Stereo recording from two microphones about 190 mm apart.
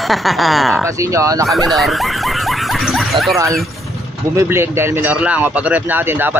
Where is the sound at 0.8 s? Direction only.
15° right (ahead or behind).